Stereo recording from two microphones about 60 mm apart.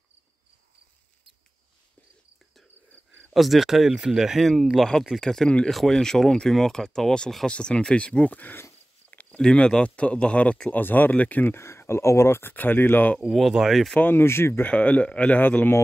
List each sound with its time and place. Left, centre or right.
3.3 s speech: centre
9.1 s a sound: left
9.4 s speech: centre
10.8 s speech: left
11.5 s speech: left
13.3 s speech: centre
13.9 s speech: left
14.6 s speech: left